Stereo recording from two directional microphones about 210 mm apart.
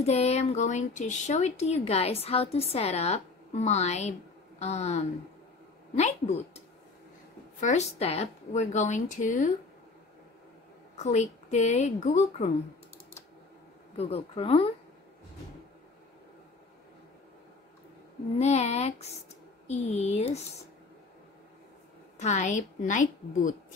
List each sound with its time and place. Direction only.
0.0 s speech: 30° left (ahead or behind)
7.6 s speech: 30° left (ahead or behind)
11.0 s speech: 35° left (ahead or behind)
13.9 s speech: 25° left (ahead or behind)
18.4 s speech: 30° left (ahead or behind)
22.2 s speech: 35° left (ahead or behind)